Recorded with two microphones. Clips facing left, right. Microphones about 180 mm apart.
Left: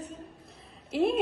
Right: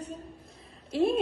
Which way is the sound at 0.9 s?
Centre (ahead or behind).